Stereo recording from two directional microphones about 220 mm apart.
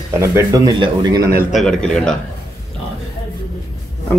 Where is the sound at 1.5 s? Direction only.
5° left (ahead or behind).